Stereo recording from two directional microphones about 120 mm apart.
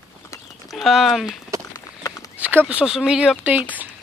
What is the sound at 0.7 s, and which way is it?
Speech, centre (ahead or behind).